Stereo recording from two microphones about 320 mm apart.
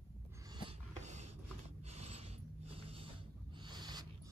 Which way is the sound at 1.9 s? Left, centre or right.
Centre.